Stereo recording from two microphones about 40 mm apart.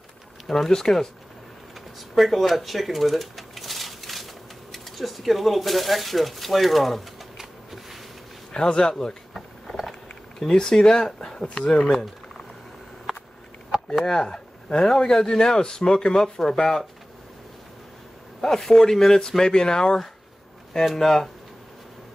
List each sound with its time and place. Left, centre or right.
0.5 s speech: centre
2.1 s a sound: centre
4.7 s speech: centre
7.3 s a sound: centre
8.5 s a man's voice: left
10.4 s a man's voice: centre
11.9 s a sound: centre
13.9 s speech: centre
18.4 s speech: centre
20.8 s speech: centre